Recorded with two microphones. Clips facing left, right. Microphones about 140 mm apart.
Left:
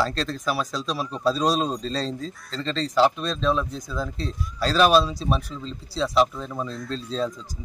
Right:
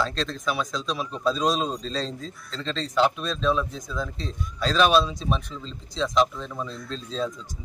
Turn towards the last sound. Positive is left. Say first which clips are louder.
# left 2 dB
turn(degrees=0)  # may be behind; listen again after turning